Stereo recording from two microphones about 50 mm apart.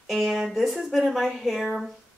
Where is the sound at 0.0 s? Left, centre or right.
Centre.